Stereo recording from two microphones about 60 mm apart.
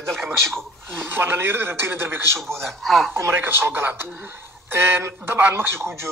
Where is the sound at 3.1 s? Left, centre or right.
Right.